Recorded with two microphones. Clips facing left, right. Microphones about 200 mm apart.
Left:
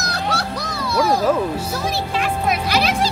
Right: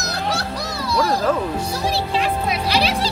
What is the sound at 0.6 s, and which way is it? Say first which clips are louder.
Music: even; 55° left (ahead or behind).